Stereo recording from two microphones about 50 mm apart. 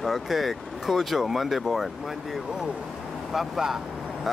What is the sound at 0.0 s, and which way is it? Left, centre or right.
Speech, centre.